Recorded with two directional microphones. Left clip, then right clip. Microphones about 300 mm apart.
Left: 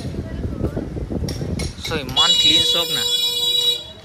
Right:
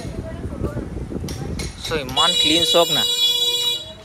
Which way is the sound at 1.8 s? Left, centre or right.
Centre.